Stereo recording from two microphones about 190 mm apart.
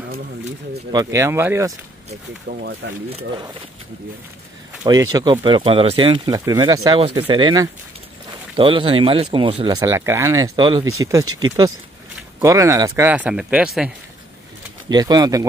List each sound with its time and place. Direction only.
0.9 s speech: 15° right (ahead or behind)
2.8 s speech: 65° right (ahead or behind)
4.8 s speech: 20° right (ahead or behind)
12.4 s speech: 15° right (ahead or behind)
14.9 s speech: 20° right (ahead or behind)